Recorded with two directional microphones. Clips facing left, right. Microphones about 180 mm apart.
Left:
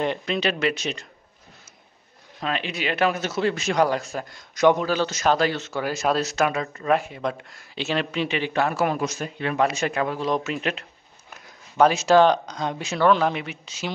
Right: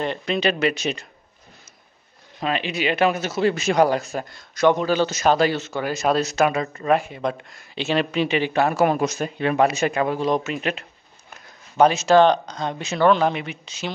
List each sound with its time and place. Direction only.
0.3 s speech: centre (ahead or behind)
2.4 s speech: 5° right (ahead or behind)
4.3 s speech: 15° left (ahead or behind)
4.7 s speech: centre (ahead or behind)
9.0 s speech: 60° right (ahead or behind)
9.7 s speech: 5° right (ahead or behind)
11.8 s speech: 10° left (ahead or behind)